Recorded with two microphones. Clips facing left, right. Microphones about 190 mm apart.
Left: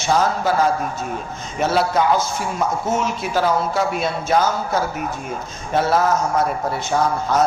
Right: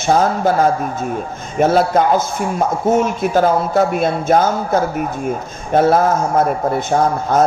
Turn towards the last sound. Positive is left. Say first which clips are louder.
# right 4 dB
turn(degrees=-50)  # may be behind; listen again after turning